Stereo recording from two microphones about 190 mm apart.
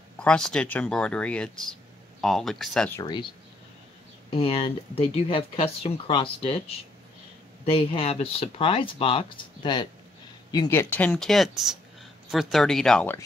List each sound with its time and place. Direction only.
0.2 s speech: 5° left (ahead or behind)
3.0 s speech: 20° left (ahead or behind)
4.3 s speech: 30° left (ahead or behind); by 13.2 s 5° left (ahead or behind)